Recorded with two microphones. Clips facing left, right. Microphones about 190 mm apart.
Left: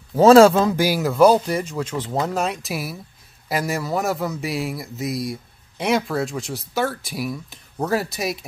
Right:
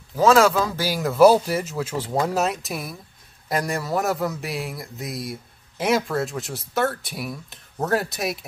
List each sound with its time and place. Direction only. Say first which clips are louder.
0.1 s speech: left 6 dB; 30° left (ahead or behind); by 1.0 s 15° left (ahead or behind)
1.0 s a man's voice: right 1 dB; 5° right (ahead or behind)